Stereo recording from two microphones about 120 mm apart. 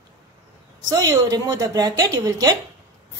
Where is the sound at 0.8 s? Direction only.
35° right (ahead or behind).